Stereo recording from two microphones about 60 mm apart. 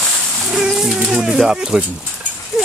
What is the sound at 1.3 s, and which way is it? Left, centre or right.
Speech, centre.